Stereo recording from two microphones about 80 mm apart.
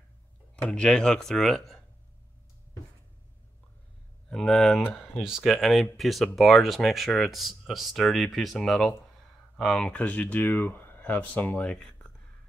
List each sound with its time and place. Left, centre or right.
0.6 s speech: centre
4.3 s speech: centre
5.2 s speech: centre